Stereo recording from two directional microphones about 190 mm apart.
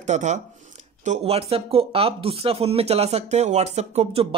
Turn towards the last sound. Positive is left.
turn(degrees=-35)  # may be behind; listen again after turning